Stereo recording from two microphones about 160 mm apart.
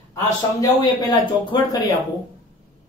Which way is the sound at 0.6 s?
25° left (ahead or behind).